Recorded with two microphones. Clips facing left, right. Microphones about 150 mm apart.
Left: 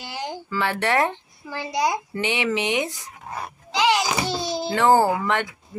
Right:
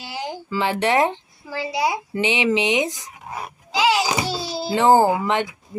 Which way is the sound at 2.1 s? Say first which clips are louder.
Right 4 dB; 20° right (ahead or behind).